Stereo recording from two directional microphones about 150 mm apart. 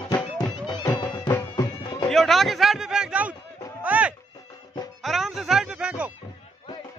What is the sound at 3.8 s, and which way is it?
Music, 10° right (ahead or behind).